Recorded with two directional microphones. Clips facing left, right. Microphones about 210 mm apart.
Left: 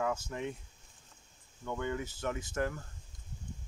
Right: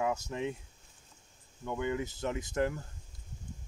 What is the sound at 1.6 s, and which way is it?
Speech, 15° right (ahead or behind).